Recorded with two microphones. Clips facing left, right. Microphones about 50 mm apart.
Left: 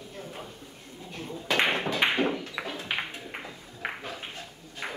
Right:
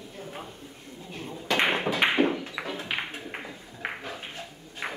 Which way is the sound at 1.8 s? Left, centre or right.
Centre.